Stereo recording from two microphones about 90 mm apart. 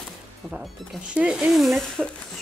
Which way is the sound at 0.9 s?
10° right (ahead or behind).